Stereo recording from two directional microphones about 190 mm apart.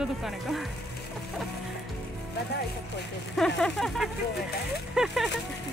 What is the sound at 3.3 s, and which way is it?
Speech, centre (ahead or behind).